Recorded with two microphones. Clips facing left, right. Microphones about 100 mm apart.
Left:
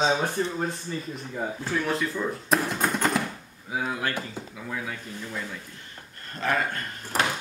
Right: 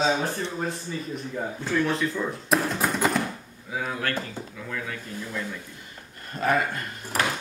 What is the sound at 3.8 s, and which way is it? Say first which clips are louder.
Speech: even; 15° left (ahead or behind).